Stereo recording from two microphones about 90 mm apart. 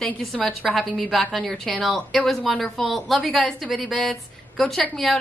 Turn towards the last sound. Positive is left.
turn(degrees=0)  # may be behind; listen again after turning